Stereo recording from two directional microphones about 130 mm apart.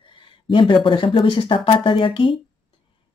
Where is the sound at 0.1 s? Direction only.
40° left (ahead or behind).